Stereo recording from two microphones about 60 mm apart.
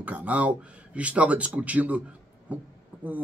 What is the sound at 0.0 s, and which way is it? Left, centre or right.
Speech, right.